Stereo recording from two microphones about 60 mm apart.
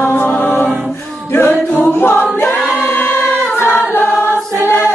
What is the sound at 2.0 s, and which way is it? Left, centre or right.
Choir, left.